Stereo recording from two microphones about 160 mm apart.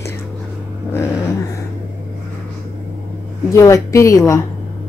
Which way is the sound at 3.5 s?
20° left (ahead or behind).